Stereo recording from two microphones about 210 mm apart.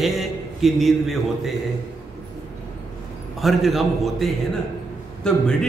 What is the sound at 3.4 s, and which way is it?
A man's voice, centre (ahead or behind).